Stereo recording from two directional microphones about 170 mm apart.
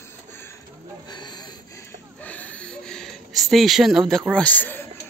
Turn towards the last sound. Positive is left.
turn(degrees=10)  # may be behind; listen again after turning